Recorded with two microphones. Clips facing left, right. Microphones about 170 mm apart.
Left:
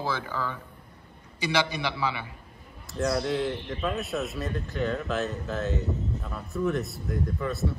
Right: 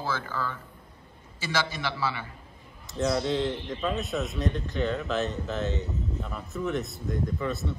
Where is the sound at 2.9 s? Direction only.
Centre (ahead or behind).